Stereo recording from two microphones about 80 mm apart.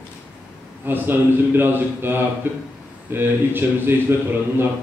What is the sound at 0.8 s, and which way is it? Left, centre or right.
A man's voice, right.